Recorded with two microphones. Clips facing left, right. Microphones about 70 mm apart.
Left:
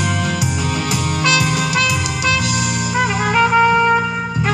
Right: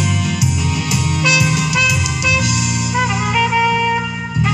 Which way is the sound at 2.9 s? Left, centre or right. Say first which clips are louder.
Left 1 dB; left.